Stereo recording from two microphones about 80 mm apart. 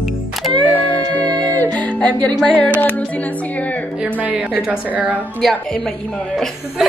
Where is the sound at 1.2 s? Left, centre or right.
Right.